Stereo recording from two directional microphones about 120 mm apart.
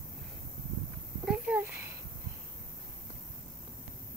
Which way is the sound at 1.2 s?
5° right (ahead or behind).